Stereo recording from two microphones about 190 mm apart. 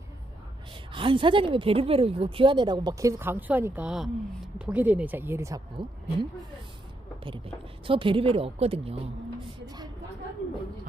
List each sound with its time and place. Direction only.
0.9 s speech: 25° right (ahead or behind)
5.8 s speech: 25° right (ahead or behind)
7.2 s speech: 25° right (ahead or behind)